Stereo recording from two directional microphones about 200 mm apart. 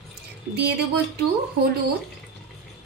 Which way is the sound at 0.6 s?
55° right (ahead or behind).